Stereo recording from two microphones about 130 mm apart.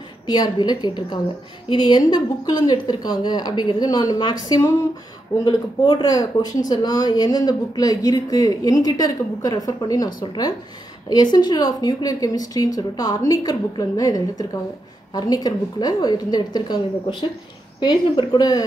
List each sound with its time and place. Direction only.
0.3 s a woman's voice: 30° left (ahead or behind)